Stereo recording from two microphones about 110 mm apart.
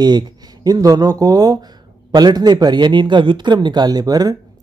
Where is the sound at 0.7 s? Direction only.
35° right (ahead or behind).